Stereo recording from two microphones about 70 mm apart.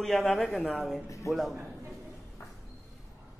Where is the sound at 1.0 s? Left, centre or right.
Left.